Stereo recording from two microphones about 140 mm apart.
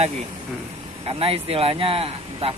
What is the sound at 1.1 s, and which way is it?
Speech, 45° right (ahead or behind).